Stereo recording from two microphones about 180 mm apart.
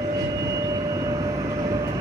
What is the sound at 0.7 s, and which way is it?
Vehicle, 20° right (ahead or behind).